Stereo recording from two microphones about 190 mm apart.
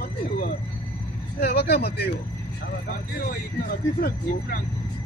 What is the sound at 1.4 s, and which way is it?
Speech, 55° left (ahead or behind).